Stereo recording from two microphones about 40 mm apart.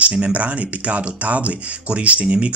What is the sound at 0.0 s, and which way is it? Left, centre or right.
Speech, right.